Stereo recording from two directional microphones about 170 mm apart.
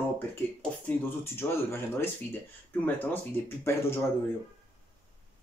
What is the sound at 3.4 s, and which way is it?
Speech, 15° left (ahead or behind).